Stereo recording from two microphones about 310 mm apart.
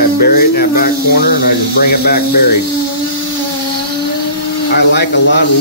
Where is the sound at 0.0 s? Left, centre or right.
Left.